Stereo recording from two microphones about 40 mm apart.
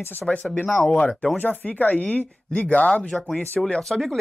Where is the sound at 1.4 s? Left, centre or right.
Left.